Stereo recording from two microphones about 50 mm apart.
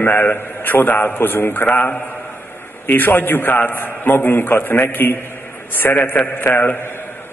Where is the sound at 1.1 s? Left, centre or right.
Left.